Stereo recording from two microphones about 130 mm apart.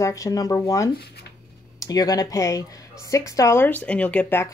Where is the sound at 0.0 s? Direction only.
25° left (ahead or behind).